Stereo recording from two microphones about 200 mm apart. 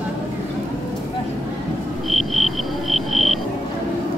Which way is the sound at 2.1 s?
Centre (ahead or behind).